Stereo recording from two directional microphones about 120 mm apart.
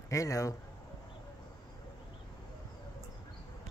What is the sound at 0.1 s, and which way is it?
Speech, 25° left (ahead or behind).